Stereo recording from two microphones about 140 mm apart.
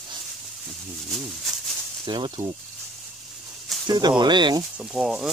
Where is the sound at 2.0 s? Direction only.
35° right (ahead or behind).